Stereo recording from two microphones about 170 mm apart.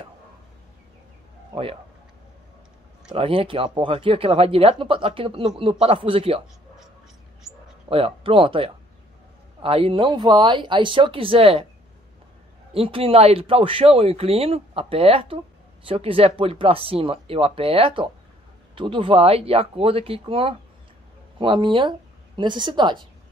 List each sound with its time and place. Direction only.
1.5 s a man's voice: 35° right (ahead or behind)
3.2 s speech: 30° right (ahead or behind)
7.9 s speech: 35° right (ahead or behind)
12.7 s a woman's voice: 35° right (ahead or behind)